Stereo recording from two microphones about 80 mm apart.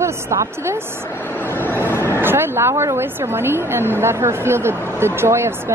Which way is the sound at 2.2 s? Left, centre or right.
Right.